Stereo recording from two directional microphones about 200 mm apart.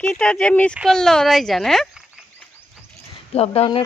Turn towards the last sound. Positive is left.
turn(degrees=30)  # may be behind; listen again after turning